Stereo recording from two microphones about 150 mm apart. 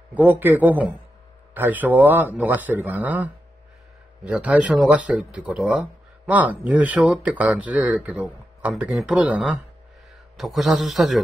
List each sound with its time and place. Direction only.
0.1 s a man's voice: 10° right (ahead or behind)